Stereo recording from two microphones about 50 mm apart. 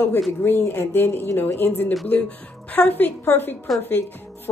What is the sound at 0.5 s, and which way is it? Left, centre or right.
Speech, left.